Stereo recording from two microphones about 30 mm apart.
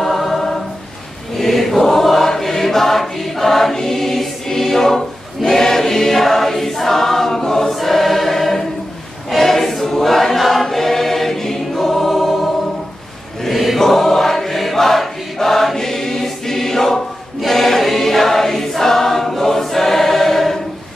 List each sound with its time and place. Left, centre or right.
0.0 s choir: centre
1.4 s choir: centre
7.7 s choir: centre
13.4 s chant: centre
13.7 s choir: centre